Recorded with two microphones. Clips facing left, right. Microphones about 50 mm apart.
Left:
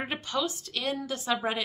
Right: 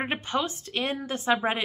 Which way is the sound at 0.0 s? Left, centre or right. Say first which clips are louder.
Right 3 dB; right.